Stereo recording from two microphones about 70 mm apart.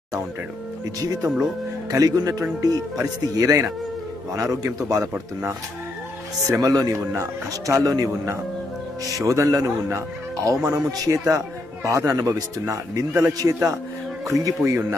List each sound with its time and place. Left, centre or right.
1.0 s a man's voice: right
6.6 s a man's voice: right
9.1 s a man's voice: right